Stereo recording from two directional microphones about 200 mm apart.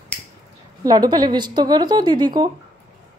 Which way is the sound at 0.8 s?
20° right (ahead or behind).